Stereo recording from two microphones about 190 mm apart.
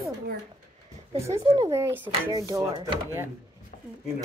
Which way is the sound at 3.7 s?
45° left (ahead or behind).